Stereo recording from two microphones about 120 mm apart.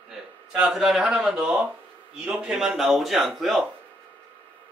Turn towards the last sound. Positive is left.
turn(degrees=0)  # may be behind; listen again after turning